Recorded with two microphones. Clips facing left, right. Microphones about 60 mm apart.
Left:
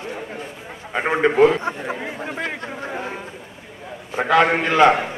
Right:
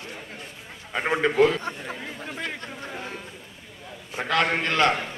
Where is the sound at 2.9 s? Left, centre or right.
Centre.